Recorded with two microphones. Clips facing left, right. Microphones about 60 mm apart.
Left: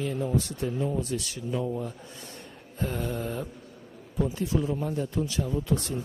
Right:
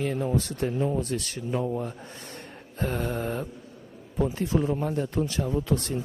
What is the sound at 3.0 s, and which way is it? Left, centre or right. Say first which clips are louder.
Speech: right 2 dB; right.